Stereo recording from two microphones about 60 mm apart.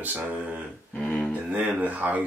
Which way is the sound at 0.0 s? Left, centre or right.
Right.